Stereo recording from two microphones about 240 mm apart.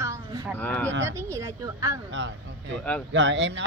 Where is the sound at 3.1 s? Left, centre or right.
Right.